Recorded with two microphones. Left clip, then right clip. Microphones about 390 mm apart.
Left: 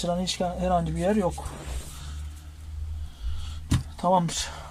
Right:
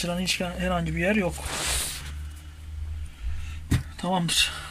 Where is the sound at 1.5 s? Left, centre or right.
Right.